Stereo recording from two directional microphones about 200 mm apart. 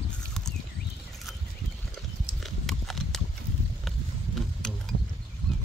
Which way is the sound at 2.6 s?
Centre (ahead or behind).